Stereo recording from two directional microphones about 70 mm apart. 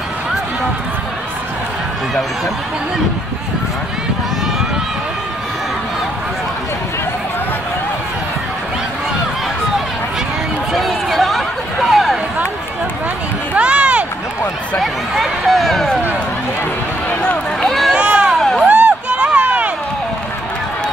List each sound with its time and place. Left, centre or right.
10.7 s run: centre
11.9 s a sound: centre
13.6 s run: centre
14.8 s speech: centre
17.2 s run: centre
17.6 s run: centre
17.9 s run: right
18.4 s a sound: centre
18.7 s run: right